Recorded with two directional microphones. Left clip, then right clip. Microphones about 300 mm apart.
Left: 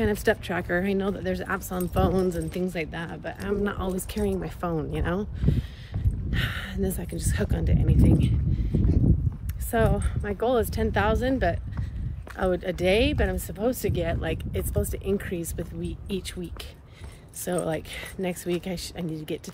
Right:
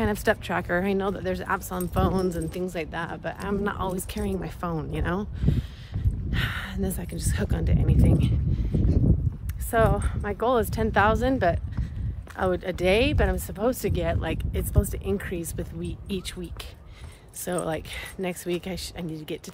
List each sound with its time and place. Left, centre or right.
0.0 s speech: centre
17.5 s speech: centre